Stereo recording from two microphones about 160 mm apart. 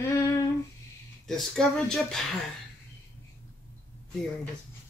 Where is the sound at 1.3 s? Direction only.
Centre (ahead or behind).